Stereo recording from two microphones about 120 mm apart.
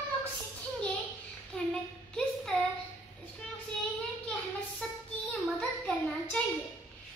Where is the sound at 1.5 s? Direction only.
5° left (ahead or behind).